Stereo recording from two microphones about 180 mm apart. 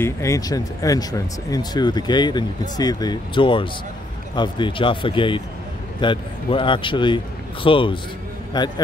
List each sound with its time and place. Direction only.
0.0 s speech: 15° left (ahead or behind)